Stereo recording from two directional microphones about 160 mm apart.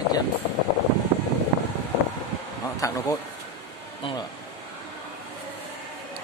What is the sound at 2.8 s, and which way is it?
Speech, 20° left (ahead or behind).